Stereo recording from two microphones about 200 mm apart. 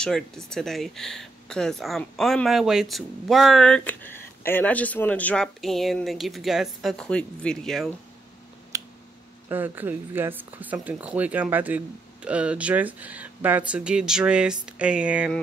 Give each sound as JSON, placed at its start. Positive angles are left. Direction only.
{"t": 0.0, "sound": "speech", "side_deg": 5}
{"t": 8.7, "sound": "finger snapping", "side_deg": -15}
{"t": 9.5, "sound": "speech", "side_deg": -10}